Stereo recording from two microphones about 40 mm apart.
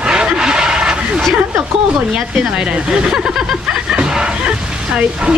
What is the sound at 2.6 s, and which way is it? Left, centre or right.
Speech, right.